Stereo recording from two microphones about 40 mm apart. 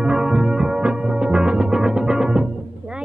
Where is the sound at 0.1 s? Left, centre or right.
Centre.